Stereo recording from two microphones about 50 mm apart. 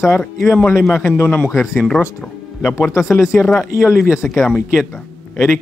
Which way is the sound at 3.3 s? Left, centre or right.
Centre.